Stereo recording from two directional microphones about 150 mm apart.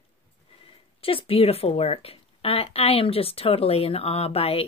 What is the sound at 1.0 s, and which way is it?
Speech, 40° left (ahead or behind).